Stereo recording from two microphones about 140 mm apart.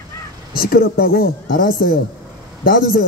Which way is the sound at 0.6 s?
90° left.